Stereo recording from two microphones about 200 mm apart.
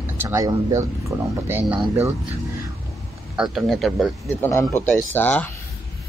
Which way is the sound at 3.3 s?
Centre (ahead or behind).